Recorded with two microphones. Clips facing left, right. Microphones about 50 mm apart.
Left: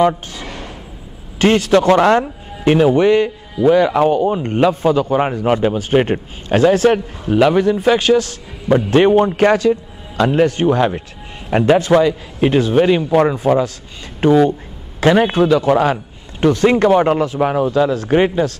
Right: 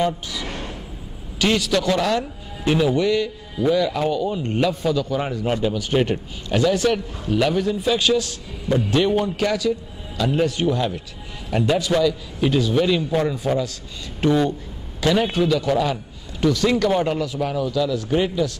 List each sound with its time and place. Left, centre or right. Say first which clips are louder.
0.0 s speech: left 7 dB; left
0.5 s a sound: left 1 dB; left
1.4 s speech: left 8 dB; left
14.2 s speech: left 7 dB; left
15.0 s speech: left 7 dB; left